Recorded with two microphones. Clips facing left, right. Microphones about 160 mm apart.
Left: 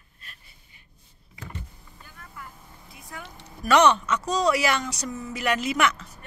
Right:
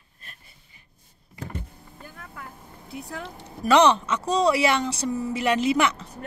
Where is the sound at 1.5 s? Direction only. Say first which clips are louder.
Right 5 dB; 55° right (ahead or behind).